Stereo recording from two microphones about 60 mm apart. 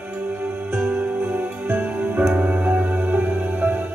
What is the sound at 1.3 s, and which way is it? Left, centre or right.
Music, right.